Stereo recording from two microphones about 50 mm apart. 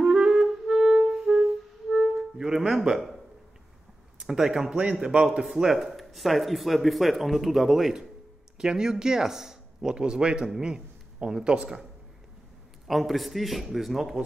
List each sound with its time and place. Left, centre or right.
0.0 s clarinet: centre
1.9 s music: centre
4.2 s speech: centre
5.4 s speech: centre
12.8 s speech: centre